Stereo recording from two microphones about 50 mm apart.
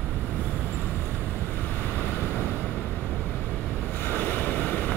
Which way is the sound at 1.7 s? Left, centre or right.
Left.